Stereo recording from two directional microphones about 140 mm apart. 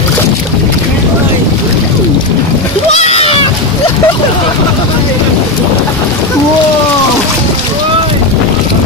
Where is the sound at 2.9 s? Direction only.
50° left (ahead or behind).